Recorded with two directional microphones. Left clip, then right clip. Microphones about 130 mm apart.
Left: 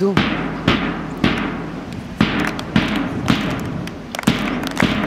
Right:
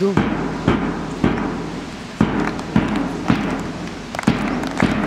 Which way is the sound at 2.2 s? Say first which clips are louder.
Left 1 dB; 30° left (ahead or behind).